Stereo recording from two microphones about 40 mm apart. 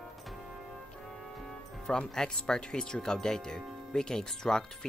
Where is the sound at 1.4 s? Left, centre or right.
Centre.